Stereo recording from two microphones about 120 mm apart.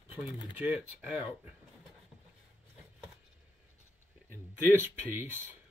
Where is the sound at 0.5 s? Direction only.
10° right (ahead or behind).